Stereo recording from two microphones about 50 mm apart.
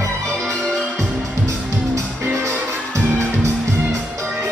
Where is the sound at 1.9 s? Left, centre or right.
Right.